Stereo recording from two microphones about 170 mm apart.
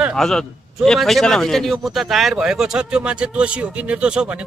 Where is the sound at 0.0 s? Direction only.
Centre (ahead or behind).